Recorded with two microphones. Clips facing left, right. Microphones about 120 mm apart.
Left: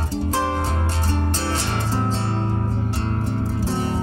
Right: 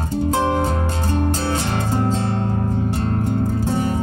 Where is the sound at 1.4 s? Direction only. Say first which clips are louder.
Right 3 dB; 20° right (ahead or behind).